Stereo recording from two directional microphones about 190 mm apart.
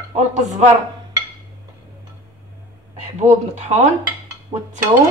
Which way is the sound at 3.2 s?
35° right (ahead or behind).